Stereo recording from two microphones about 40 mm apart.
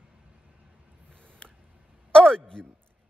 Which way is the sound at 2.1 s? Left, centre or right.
Centre.